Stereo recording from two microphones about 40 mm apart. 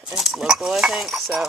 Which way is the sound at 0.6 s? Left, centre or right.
Centre.